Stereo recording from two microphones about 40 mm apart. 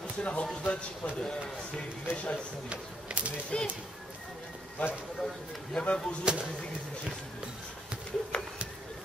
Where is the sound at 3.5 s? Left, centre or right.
Left.